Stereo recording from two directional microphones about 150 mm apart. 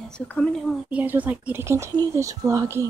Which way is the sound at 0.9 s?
10° right (ahead or behind).